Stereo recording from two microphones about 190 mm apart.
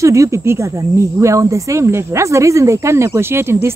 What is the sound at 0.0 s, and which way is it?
Speech, 15° right (ahead or behind).